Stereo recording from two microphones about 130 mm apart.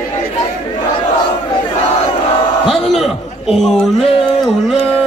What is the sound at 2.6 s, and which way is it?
A man's voice, centre (ahead or behind).